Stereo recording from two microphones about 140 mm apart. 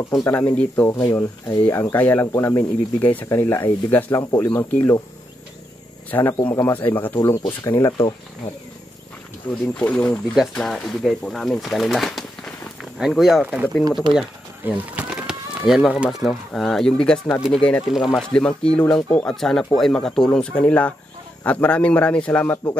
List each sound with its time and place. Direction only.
0.2 s speech: 20° left (ahead or behind)
6.0 s speech: 15° left (ahead or behind)
9.5 s speech: 15° left (ahead or behind)